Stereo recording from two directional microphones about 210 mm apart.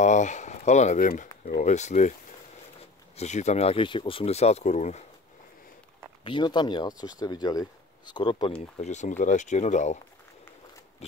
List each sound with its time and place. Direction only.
0.0 s speech: 35° left (ahead or behind)
3.2 s speech: 35° left (ahead or behind)
6.2 s speech: 20° left (ahead or behind)
8.7 s speech: 35° left (ahead or behind)